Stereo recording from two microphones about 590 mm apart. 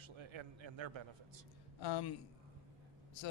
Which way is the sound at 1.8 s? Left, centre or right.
Left.